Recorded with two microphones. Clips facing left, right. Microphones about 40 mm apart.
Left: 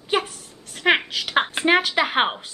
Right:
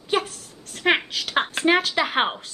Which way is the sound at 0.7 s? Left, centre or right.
Centre.